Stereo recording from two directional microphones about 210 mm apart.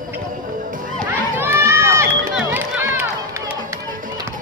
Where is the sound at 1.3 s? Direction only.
10° right (ahead or behind).